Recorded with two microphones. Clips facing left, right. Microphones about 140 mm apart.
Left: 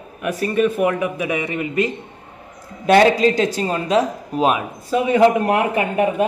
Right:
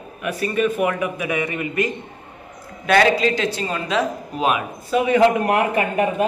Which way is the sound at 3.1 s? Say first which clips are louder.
Left 3 dB; 40° left (ahead or behind).